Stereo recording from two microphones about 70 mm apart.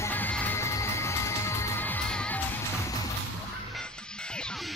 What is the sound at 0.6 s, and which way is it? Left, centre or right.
Music, left.